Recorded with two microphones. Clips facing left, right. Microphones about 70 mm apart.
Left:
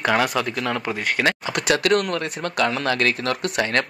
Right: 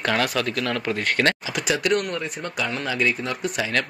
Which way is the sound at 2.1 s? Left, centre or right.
Left.